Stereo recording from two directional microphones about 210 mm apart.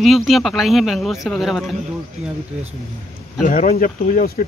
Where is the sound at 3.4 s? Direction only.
40° left (ahead or behind).